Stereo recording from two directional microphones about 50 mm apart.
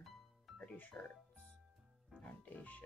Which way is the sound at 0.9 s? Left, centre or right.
Centre.